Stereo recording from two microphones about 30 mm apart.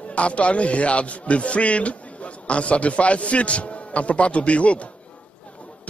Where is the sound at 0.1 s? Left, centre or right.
Left.